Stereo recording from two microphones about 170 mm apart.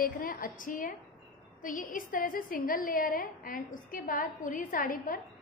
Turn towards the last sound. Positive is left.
turn(degrees=60)  # may be behind; listen again after turning